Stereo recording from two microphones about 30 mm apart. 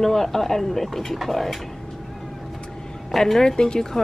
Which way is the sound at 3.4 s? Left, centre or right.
Left.